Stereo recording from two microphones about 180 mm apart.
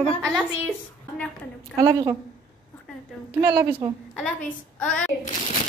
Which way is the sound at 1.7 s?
20° right (ahead or behind).